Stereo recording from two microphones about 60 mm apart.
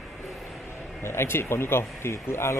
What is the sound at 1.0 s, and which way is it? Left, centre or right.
Speech, left.